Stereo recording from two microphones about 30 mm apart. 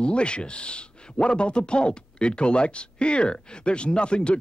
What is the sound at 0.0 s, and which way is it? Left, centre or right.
A man's voice, left.